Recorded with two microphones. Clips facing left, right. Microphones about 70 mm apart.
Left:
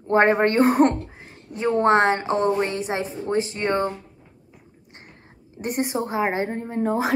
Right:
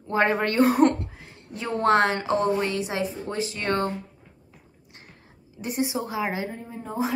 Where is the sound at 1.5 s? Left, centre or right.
Left.